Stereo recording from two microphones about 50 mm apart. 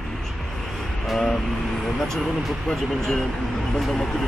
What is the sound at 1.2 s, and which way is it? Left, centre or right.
Speech, centre.